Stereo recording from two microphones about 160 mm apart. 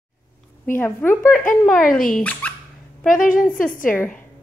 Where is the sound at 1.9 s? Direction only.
60° left (ahead or behind).